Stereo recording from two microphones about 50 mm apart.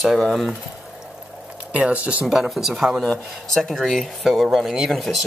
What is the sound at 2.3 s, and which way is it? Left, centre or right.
Speech, centre.